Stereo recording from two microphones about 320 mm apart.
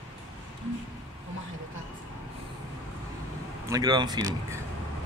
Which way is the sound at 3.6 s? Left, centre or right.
Centre.